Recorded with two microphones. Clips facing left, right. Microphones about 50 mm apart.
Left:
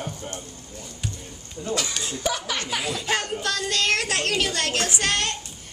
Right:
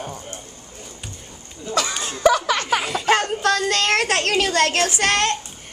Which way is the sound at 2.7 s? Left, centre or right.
Right.